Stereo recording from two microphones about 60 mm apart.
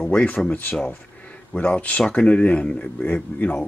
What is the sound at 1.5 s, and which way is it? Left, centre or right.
Speech, left.